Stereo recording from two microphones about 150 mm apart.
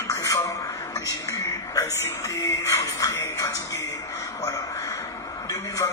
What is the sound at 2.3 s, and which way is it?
A man's voice, 20° left (ahead or behind).